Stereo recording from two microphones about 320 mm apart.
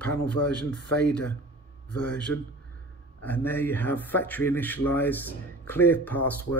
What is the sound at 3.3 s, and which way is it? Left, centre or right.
Speech, centre.